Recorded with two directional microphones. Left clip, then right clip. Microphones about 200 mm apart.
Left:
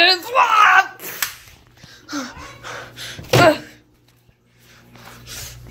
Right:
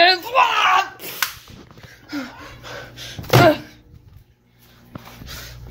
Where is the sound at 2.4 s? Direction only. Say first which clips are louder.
Left 2 dB; 15° right (ahead or behind).